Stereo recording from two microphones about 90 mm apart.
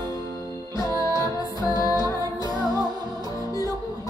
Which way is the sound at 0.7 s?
50° right (ahead or behind).